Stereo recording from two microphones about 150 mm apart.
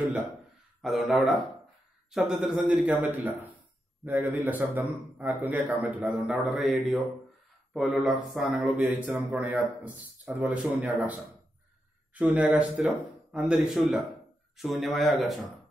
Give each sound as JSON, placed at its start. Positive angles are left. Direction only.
{"t": 0.8, "sound": "speech", "side_deg": 0}
{"t": 5.9, "sound": "speech", "side_deg": 0}